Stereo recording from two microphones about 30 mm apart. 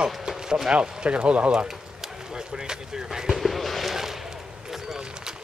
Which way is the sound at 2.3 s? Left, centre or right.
Right.